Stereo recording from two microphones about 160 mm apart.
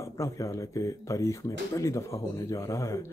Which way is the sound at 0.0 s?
20° left (ahead or behind).